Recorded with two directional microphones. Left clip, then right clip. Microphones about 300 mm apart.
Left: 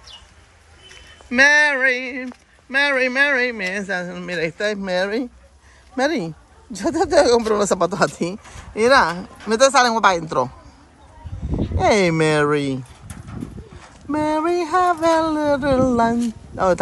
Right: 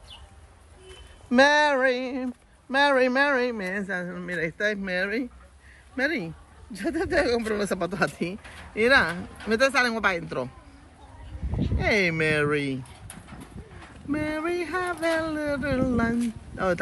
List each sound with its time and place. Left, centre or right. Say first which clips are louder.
1.3 s a man's voice: left 5 dB; centre
12.0 s speech: left 6 dB; centre
14.1 s speech: left 9 dB; centre
14.9 s speech: left 7 dB; left
15.2 s speech: left 9 dB; centre